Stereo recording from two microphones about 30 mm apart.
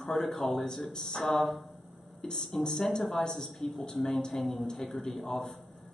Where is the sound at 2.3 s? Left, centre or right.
Centre.